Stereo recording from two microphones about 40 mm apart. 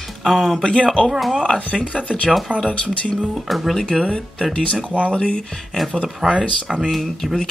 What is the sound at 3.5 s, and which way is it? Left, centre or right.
Speech, centre.